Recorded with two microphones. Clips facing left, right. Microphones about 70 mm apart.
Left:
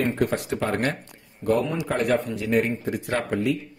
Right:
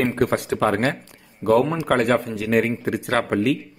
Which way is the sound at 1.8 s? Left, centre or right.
Right.